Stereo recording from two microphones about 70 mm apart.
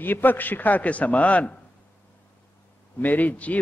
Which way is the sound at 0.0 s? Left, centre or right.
Left.